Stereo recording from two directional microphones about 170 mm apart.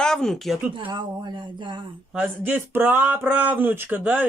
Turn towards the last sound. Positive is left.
turn(degrees=-10)  # may be behind; listen again after turning